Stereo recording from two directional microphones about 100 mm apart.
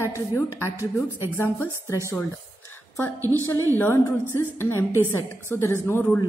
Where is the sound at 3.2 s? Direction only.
35° right (ahead or behind).